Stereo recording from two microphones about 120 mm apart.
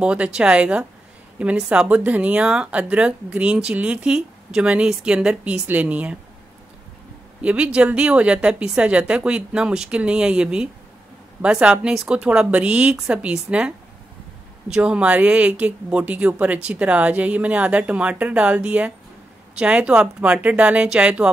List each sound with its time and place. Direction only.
0.0 s speech: 10° right (ahead or behind)
7.4 s speech: 10° right (ahead or behind)